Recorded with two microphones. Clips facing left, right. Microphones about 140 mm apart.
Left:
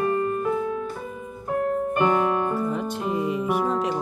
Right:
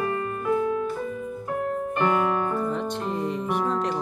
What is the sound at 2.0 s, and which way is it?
Piano, 20° left (ahead or behind).